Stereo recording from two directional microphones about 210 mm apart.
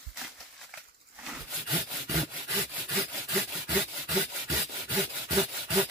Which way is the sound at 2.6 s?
20° right (ahead or behind).